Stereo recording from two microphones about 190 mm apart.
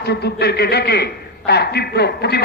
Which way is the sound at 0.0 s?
60° left (ahead or behind).